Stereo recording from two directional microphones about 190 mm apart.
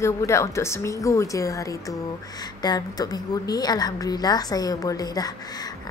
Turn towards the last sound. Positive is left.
turn(degrees=20)  # may be behind; listen again after turning